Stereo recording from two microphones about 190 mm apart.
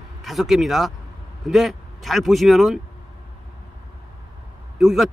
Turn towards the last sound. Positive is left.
turn(degrees=0)  # may be behind; listen again after turning